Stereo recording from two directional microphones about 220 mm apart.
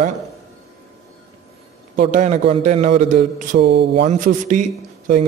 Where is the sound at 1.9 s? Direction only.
30° right (ahead or behind).